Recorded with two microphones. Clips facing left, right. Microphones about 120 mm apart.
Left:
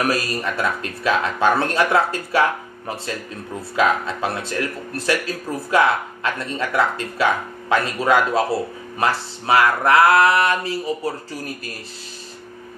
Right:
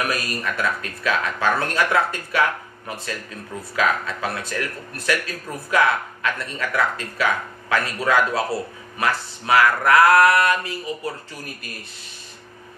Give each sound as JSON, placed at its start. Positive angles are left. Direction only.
{"t": 0.0, "sound": "speech", "side_deg": 30}
{"t": 3.7, "sound": "speech", "side_deg": 25}